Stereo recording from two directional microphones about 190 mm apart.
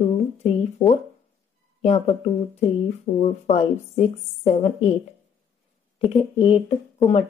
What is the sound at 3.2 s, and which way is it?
Speech, 35° left (ahead or behind).